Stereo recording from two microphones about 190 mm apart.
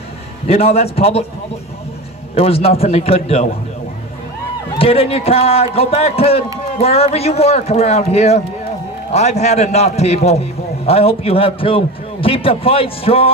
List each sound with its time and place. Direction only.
0.5 s a man's voice: 30° left (ahead or behind)
2.3 s a man's voice: 30° left (ahead or behind)
4.7 s a man's voice: 30° left (ahead or behind)